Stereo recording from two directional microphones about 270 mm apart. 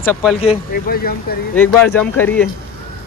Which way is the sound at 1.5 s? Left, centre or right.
Centre.